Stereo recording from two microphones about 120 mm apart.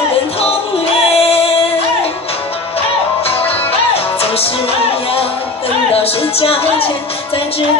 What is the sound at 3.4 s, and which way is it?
Music, 55° left (ahead or behind).